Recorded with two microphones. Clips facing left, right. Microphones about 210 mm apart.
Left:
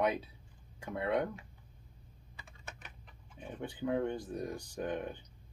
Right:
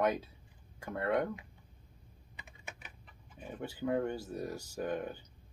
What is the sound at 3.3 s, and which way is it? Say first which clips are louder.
Speech: even; 5° right (ahead or behind).